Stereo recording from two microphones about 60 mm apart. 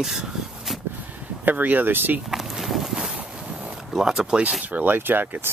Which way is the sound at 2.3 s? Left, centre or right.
Centre.